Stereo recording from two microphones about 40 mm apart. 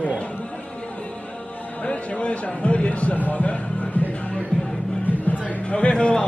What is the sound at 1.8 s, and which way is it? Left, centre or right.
Speech, left.